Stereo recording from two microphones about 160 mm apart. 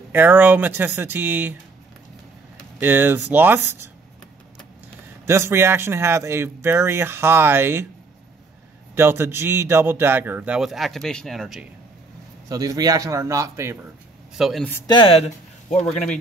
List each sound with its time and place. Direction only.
0.1 s a man's voice: 10° right (ahead or behind)
2.8 s a man's voice: 15° right (ahead or behind)
5.2 s a man's voice: 15° right (ahead or behind)
8.9 s a man's voice: 15° right (ahead or behind)
12.4 s a man's voice: 25° right (ahead or behind)
14.3 s speech: centre (ahead or behind)
14.9 s speech: 35° left (ahead or behind)